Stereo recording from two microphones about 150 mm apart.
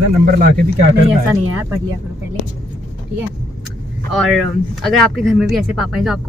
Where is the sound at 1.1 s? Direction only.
15° right (ahead or behind).